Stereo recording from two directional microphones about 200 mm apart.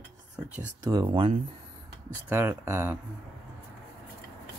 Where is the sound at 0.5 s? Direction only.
15° right (ahead or behind).